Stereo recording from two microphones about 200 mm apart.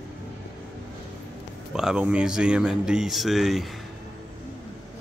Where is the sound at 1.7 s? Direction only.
5° right (ahead or behind).